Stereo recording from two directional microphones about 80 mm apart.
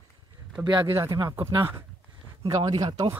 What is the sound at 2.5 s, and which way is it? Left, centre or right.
Speech, right.